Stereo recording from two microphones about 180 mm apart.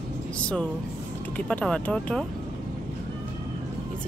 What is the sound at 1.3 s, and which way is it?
Speech, 5° left (ahead or behind).